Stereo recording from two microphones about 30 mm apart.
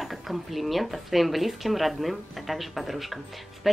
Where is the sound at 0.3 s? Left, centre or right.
Centre.